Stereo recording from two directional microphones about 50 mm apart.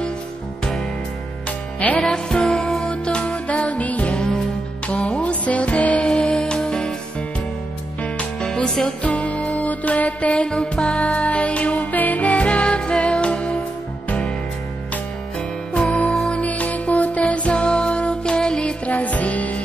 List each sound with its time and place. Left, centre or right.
1.8 s music: left
2.0 s music: centre
2.9 s music: left
8.4 s music: centre
9.0 s music: left
10.5 s music: centre
16.1 s music: centre
16.3 s music: left
18.9 s music: left